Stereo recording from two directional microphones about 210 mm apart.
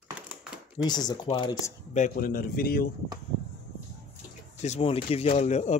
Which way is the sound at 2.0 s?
40° left (ahead or behind).